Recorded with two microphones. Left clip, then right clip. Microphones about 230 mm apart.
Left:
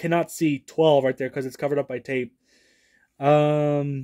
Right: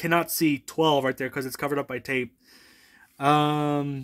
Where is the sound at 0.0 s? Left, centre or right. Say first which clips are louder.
Even; centre.